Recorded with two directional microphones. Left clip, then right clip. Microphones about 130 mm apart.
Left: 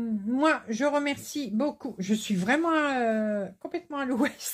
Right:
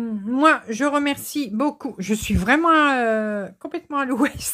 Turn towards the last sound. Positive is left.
turn(degrees=-45)  # may be behind; listen again after turning